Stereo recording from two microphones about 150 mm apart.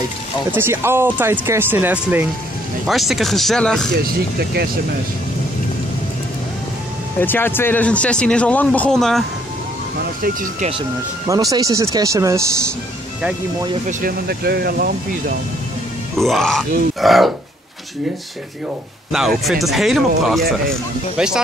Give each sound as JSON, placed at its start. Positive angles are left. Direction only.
{"t": 0.5, "sound": "speech", "side_deg": -15}
{"t": 2.9, "sound": "speech", "side_deg": 0}
{"t": 7.2, "sound": "speech", "side_deg": 15}
{"t": 10.2, "sound": "speech", "side_deg": -65}
{"t": 11.2, "sound": "speech", "side_deg": -25}
{"t": 13.8, "sound": "speech", "side_deg": -80}
{"t": 16.2, "sound": "speech", "side_deg": 0}
{"t": 19.1, "sound": "speech", "side_deg": 0}